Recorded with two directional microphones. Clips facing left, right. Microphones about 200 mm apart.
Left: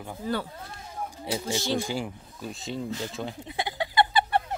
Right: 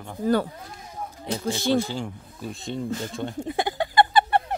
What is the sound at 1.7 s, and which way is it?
Speech, 10° left (ahead or behind).